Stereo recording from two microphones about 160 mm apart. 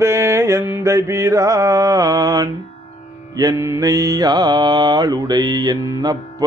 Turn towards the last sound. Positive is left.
turn(degrees=-20)  # may be behind; listen again after turning